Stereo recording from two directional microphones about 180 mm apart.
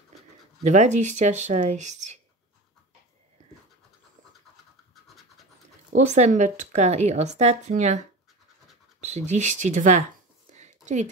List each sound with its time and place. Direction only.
0.7 s a woman's voice: 40° right (ahead or behind)
5.9 s a woman's voice: 40° right (ahead or behind)
9.0 s a woman's voice: 40° right (ahead or behind)
10.5 s a sound: 40° right (ahead or behind)